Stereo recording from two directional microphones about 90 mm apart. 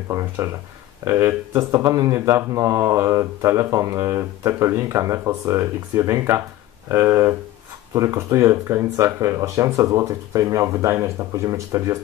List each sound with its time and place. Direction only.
0.1 s speech: 40° right (ahead or behind)
1.6 s speech: 40° right (ahead or behind)